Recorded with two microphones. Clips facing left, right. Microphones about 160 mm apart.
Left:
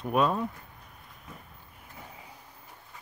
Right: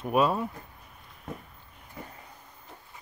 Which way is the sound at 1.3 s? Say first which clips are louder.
Right 9 dB; 65° right (ahead or behind).